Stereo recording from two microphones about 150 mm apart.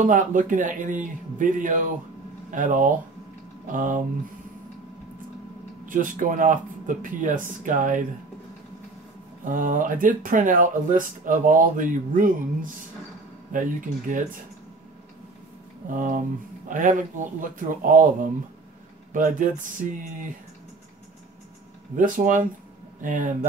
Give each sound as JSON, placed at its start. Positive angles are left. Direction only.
{"t": 0.0, "sound": "speech", "side_deg": -60}
{"t": 5.9, "sound": "speech", "side_deg": -60}
{"t": 9.4, "sound": "speech", "side_deg": -60}
{"t": 15.9, "sound": "speech", "side_deg": -60}
{"t": 19.1, "sound": "speech", "side_deg": -60}
{"t": 21.9, "sound": "speech", "side_deg": -60}